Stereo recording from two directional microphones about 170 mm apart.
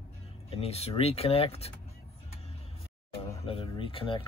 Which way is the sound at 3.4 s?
30° left (ahead or behind).